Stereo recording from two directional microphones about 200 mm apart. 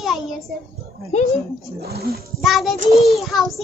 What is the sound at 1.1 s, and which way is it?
Speech, 35° left (ahead or behind).